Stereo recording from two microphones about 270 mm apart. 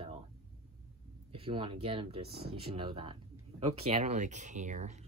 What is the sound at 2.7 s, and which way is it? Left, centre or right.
Speech, right.